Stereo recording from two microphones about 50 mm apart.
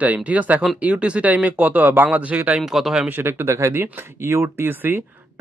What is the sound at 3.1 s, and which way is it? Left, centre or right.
Speech, right.